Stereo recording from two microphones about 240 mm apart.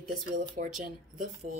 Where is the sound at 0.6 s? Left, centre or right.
Right.